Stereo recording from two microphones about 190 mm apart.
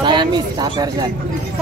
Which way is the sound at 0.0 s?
25° right (ahead or behind).